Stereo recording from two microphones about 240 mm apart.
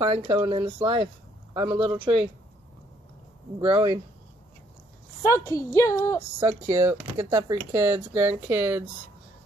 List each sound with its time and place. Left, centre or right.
0.0 s speech: right
3.6 s speech: centre
5.2 s a woman's voice: centre
6.4 s speech: centre